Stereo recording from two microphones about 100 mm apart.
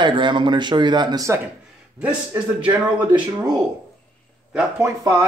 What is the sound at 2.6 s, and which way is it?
Speech, 50° right (ahead or behind).